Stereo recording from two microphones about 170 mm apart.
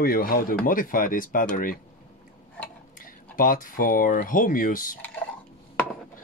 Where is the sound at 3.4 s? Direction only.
55° left (ahead or behind).